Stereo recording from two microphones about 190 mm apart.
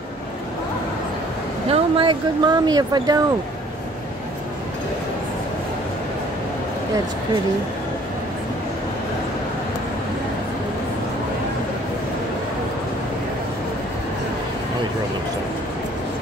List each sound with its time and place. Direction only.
1.7 s speech: 25° right (ahead or behind)